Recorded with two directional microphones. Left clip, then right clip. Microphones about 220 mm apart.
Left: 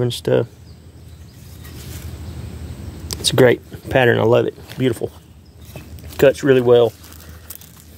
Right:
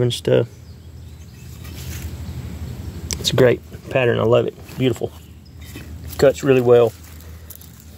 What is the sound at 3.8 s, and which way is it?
Speech, 30° left (ahead or behind).